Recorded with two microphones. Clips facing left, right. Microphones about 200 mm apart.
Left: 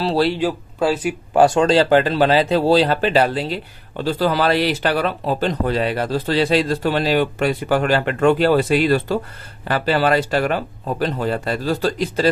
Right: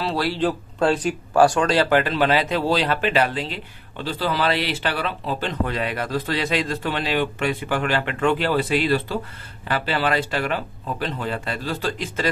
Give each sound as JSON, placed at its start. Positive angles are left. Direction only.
{"t": 0.0, "sound": "speech", "side_deg": 30}
{"t": 0.4, "sound": "speech", "side_deg": 10}
{"t": 1.3, "sound": "speech", "side_deg": 20}